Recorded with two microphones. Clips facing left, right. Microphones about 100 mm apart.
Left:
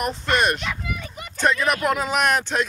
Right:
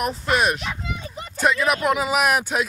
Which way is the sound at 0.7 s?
30° right (ahead or behind).